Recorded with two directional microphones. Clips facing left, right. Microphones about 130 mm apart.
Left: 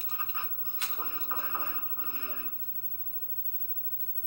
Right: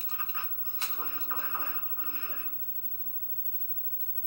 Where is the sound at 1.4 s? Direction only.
20° left (ahead or behind).